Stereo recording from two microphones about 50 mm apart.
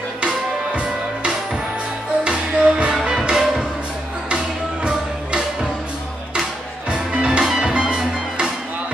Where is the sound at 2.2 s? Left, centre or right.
Right.